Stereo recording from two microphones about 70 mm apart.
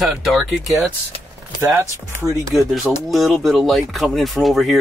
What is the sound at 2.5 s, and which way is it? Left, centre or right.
Speech, centre.